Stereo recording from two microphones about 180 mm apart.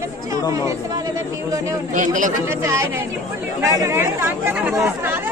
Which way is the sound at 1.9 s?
45° right (ahead or behind).